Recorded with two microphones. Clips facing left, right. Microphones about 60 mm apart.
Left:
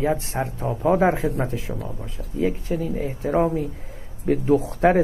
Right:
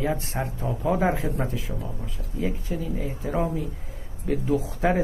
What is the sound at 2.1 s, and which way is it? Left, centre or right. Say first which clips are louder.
Speech: left 6 dB; left.